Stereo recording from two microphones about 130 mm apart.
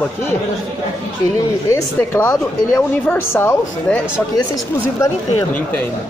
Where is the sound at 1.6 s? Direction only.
20° left (ahead or behind).